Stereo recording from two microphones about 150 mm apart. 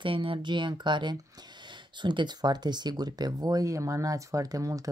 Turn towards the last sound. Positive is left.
turn(degrees=-20)  # may be behind; listen again after turning